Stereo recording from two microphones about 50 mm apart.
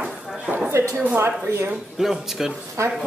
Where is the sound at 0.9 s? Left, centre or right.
Right.